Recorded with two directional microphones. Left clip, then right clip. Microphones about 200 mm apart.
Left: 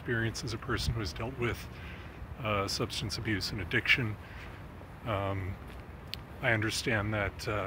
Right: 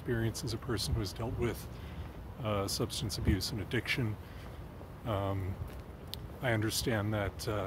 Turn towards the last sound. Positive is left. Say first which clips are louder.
# left 3 dB
turn(degrees=-15)  # may be behind; listen again after turning